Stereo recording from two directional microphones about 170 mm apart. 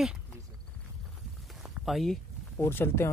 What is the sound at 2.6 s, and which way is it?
Speech, 15° left (ahead or behind).